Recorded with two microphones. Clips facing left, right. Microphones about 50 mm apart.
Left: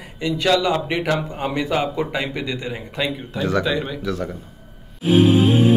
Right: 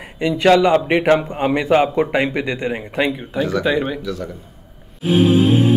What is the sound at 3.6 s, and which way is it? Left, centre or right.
Speech, centre.